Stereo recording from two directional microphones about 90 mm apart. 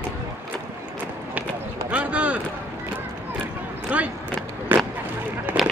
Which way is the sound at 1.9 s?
15° right (ahead or behind).